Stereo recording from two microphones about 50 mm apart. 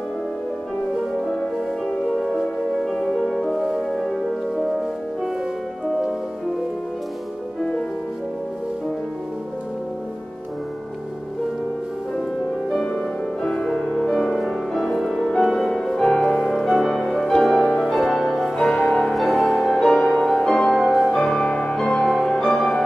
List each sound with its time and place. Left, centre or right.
1.3 s music: centre
2.0 s music: centre
5.9 s music: centre
12.6 s music: centre
16.4 s music: centre
17.0 s music: centre
20.1 s music: centre
20.3 s music: centre